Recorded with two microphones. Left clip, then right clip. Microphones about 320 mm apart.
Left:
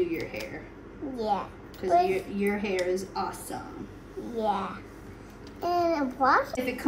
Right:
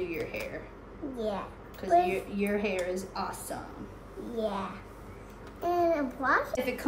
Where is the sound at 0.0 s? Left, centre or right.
Centre.